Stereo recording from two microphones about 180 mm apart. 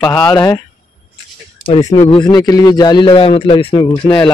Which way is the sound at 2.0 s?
25° left (ahead or behind).